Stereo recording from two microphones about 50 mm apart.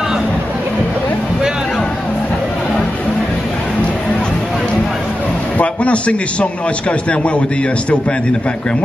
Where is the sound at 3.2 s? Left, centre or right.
Centre.